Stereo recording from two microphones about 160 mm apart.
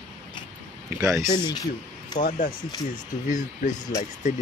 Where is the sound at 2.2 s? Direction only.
60° left (ahead or behind).